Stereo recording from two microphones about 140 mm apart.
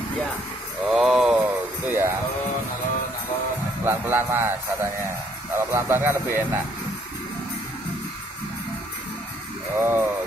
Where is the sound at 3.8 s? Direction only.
15° right (ahead or behind).